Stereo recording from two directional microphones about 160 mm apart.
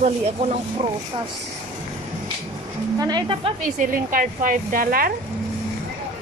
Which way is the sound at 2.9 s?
25° right (ahead or behind).